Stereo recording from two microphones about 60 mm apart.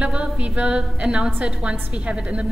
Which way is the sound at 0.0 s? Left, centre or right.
Right.